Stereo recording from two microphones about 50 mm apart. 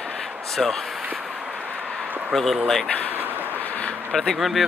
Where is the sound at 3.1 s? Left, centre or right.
Right.